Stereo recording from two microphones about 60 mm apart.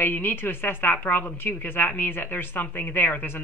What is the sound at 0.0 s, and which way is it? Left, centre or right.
Speech, left.